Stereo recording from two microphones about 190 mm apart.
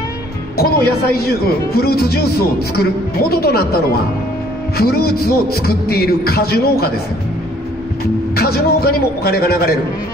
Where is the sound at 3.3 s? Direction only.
55° left (ahead or behind).